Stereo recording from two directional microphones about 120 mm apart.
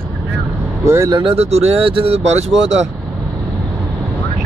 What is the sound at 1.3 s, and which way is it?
Speech, 60° right (ahead or behind).